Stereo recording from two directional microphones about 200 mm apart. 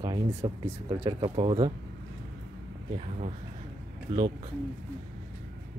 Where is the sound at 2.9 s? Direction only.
35° right (ahead or behind).